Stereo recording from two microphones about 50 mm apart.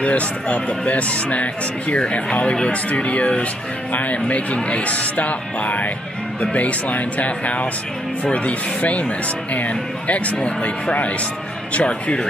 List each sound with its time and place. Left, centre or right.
0.0 s speech: left